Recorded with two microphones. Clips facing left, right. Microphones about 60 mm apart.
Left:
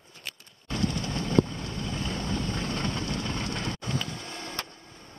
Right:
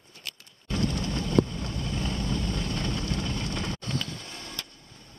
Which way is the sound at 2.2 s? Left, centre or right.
Left.